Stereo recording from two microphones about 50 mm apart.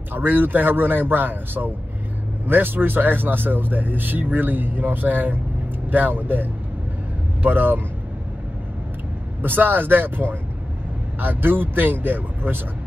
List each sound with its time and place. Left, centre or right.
0.1 s speech: right
9.4 s speech: right